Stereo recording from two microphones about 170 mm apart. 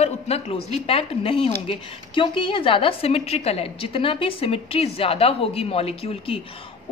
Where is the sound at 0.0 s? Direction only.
35° left (ahead or behind).